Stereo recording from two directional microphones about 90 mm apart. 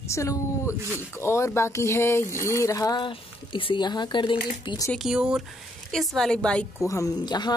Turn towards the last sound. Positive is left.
turn(degrees=50)  # may be behind; listen again after turning